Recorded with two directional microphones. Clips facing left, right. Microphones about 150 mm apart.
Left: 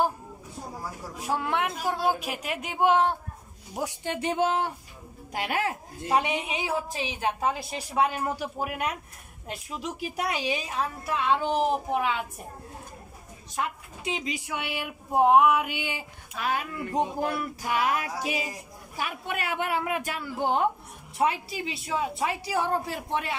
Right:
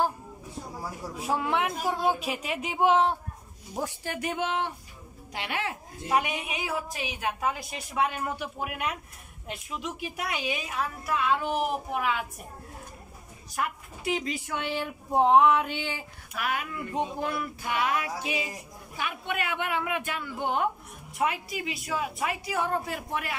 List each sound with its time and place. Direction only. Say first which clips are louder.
1.2 s speech: even; centre (ahead or behind)
4.0 s a woman's voice: left 8 dB; 25° left (ahead or behind); by 5.8 s 40° left (ahead or behind)
6.1 s a woman's voice: left 2 dB; 25° left (ahead or behind)
13.6 s a woman's voice: even; 20° left (ahead or behind)
16.3 s speech: left 2 dB; 30° left (ahead or behind)
17.2 s a woman's voice: left 2 dB; 40° left (ahead or behind); by 23.3 s 25° left (ahead or behind)